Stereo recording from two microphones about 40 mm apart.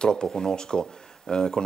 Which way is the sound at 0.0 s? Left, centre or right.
Centre.